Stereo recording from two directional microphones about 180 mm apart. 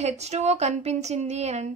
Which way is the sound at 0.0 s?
40° right (ahead or behind).